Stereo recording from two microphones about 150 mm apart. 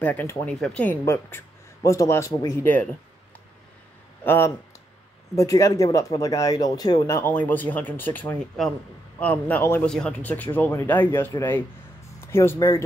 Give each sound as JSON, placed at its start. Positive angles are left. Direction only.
{"t": 0.0, "sound": "speech", "side_deg": 10}
{"t": 4.2, "sound": "speech", "side_deg": 15}